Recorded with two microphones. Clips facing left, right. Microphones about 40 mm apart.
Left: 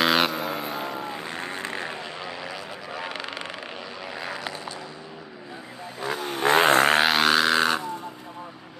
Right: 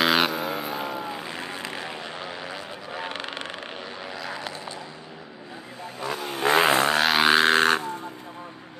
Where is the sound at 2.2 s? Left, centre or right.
Right.